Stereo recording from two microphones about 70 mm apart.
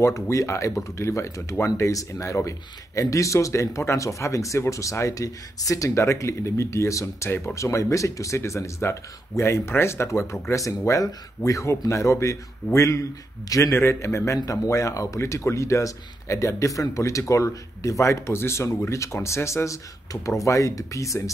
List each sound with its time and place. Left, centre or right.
0.0 s speech: left
14.4 s speech: left
14.7 s speech: left